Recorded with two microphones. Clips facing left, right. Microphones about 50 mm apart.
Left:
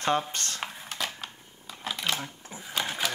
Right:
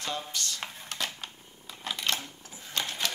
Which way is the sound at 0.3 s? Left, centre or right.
Left.